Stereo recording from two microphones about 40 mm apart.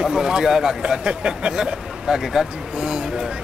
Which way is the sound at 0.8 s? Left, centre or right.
Right.